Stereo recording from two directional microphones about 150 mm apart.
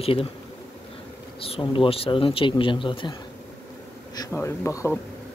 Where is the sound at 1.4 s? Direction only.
35° left (ahead or behind).